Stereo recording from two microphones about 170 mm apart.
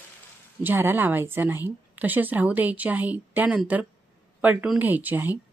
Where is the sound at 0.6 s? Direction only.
10° right (ahead or behind).